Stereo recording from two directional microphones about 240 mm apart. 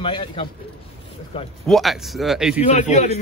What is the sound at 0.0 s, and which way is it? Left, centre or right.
Speech, left.